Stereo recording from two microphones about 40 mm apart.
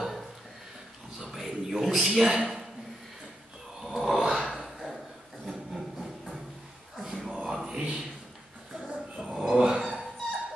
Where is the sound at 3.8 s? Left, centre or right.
Centre.